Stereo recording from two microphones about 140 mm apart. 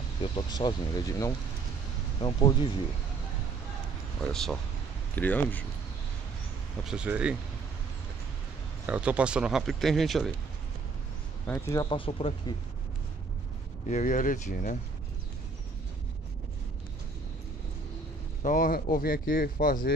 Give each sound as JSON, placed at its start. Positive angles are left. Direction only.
{"t": 0.2, "sound": "speech", "side_deg": 30}
{"t": 2.1, "sound": "speech", "side_deg": 35}
{"t": 4.3, "sound": "speech", "side_deg": 5}
{"t": 6.8, "sound": "speech", "side_deg": -5}
{"t": 8.8, "sound": "speech", "side_deg": -10}
{"t": 11.5, "sound": "speech", "side_deg": 20}
{"t": 11.9, "sound": "speech", "side_deg": 40}
{"t": 13.8, "sound": "speech", "side_deg": 60}
{"t": 18.4, "sound": "speech", "side_deg": 70}